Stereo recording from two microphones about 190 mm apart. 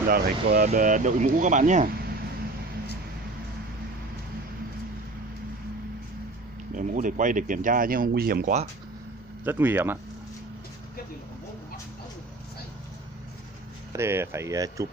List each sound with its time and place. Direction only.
0.1 s speech: 50° right (ahead or behind)
6.7 s speech: 45° right (ahead or behind)
9.4 s speech: 10° right (ahead or behind)
13.9 s speech: 15° right (ahead or behind)